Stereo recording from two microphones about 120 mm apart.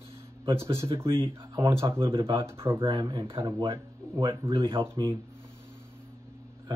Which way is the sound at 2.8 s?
40° right (ahead or behind).